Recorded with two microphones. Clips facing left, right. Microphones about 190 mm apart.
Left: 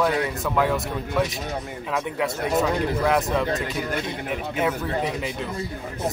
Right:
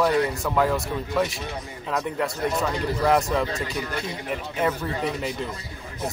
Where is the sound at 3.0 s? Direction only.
Centre (ahead or behind).